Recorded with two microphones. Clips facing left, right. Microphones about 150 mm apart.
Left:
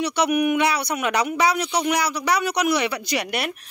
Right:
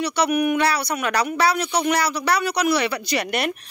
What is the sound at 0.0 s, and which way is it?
Speech, 20° left (ahead or behind).